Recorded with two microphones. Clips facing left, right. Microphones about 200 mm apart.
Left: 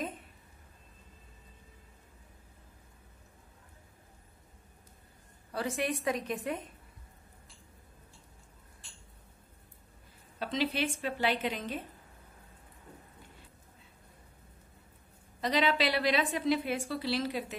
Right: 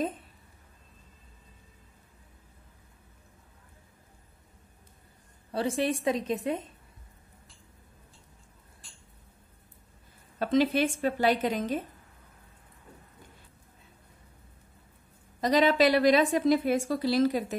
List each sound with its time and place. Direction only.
5.5 s a woman's voice: 30° right (ahead or behind)
10.4 s a woman's voice: 45° right (ahead or behind)
15.4 s a woman's voice: 45° right (ahead or behind)